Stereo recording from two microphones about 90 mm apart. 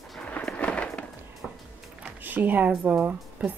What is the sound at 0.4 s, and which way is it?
Thunder, 10° left (ahead or behind).